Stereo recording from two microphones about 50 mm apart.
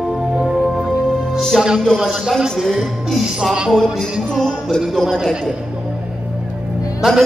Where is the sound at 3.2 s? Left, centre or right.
Centre.